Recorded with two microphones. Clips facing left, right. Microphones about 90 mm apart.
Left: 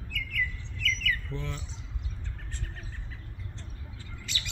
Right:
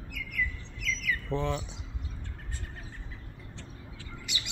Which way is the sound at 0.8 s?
15° right (ahead or behind).